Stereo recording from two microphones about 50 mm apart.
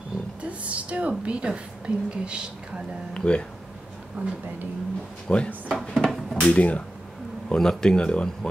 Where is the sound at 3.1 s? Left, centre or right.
Centre.